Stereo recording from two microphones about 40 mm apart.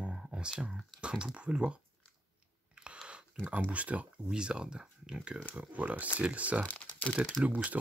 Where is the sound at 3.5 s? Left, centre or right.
Right.